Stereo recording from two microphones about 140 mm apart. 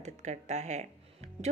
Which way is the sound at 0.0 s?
55° right (ahead or behind).